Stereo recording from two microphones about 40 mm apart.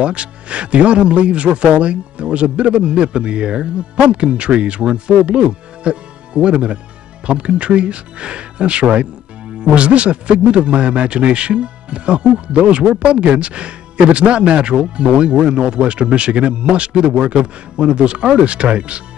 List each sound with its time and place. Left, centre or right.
0.0 s a man's voice: right